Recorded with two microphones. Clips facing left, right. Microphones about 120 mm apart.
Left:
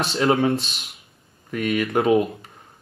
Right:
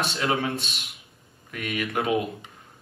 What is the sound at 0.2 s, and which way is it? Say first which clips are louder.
Speech: left 9 dB; 30° left (ahead or behind).